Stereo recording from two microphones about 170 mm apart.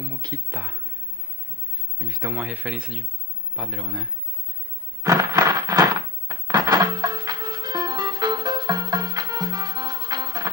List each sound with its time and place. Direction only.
0.1 s speech: 25° right (ahead or behind)
0.5 s speech: 10° right (ahead or behind)
2.0 s speech: 20° right (ahead or behind)
2.3 s speech: 10° right (ahead or behind)
5.0 s a sound: 20° right (ahead or behind)